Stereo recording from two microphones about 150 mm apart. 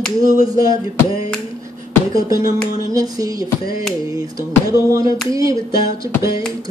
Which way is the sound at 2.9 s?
25° right (ahead or behind).